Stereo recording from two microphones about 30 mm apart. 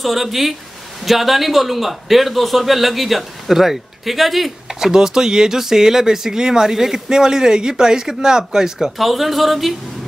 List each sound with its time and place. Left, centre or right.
0.0 s a man's voice: centre
4.9 s speech: centre
8.9 s a man's voice: centre